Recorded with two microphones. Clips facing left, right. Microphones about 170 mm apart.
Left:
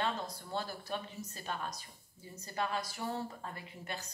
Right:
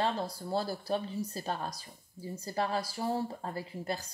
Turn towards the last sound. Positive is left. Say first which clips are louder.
# right 7 dB
turn(degrees=-35)  # may be behind; listen again after turning